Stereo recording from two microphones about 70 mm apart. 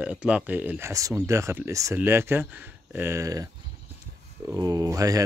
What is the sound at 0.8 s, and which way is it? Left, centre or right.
Speech, right.